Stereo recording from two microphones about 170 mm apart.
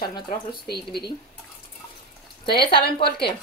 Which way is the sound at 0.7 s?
70° left (ahead or behind).